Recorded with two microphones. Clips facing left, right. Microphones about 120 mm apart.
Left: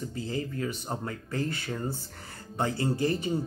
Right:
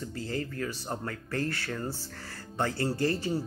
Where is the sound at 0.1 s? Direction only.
15° left (ahead or behind).